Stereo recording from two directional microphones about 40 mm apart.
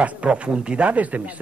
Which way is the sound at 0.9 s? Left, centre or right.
Right.